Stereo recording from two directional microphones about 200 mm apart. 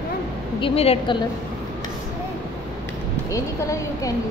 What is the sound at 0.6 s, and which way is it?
Speech, 25° left (ahead or behind).